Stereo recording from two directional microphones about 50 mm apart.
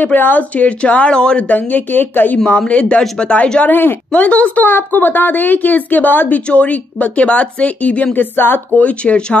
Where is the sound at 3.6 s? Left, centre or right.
Left.